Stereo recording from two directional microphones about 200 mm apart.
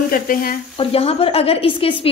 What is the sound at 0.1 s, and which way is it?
Speech, 45° left (ahead or behind).